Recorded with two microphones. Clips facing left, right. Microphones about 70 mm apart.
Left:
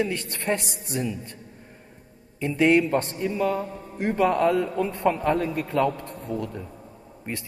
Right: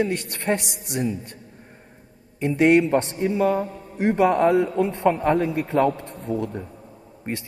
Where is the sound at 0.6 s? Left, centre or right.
Left.